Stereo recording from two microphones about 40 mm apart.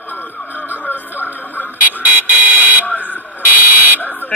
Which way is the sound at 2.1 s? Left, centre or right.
Right.